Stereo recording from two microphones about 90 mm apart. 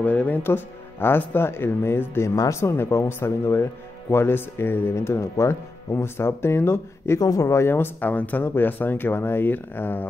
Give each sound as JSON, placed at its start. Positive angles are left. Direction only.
{"t": 0.0, "sound": "speech", "side_deg": 15}
{"t": 2.3, "sound": "speech", "side_deg": 40}
{"t": 2.6, "sound": "speech", "side_deg": 30}
{"t": 7.2, "sound": "speech", "side_deg": 40}